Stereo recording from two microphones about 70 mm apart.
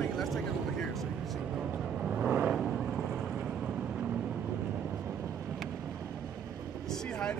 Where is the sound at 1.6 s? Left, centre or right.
Centre.